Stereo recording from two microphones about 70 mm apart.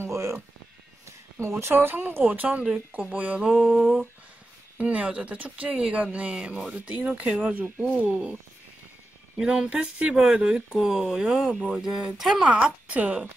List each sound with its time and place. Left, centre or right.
0.0 s music: right
1.4 s speech: right; by 3.6 s centre
3.6 s a sound: centre
4.7 s speech: centre
9.4 s speech: centre
12.4 s speech: centre